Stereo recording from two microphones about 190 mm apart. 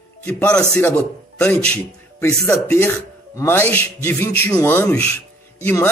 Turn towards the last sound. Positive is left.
turn(degrees=10)  # may be behind; listen again after turning